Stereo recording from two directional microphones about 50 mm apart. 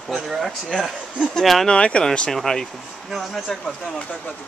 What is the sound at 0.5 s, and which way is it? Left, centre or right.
Speech, centre.